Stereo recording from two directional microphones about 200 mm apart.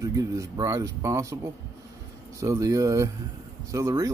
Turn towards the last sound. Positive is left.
turn(degrees=-15)  # may be behind; listen again after turning